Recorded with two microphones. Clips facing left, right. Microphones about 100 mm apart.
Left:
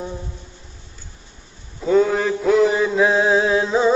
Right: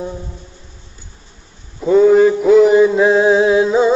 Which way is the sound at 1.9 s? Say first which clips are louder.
Right 7 dB; 10° right (ahead or behind).